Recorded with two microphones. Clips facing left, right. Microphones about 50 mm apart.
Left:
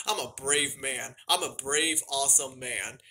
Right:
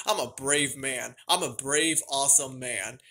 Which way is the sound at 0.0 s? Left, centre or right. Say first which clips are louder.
Right 4 dB; centre.